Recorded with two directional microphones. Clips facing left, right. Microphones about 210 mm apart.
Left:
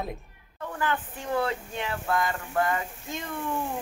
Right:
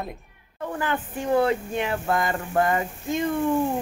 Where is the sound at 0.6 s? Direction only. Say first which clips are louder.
Right 3 dB; 20° right (ahead or behind).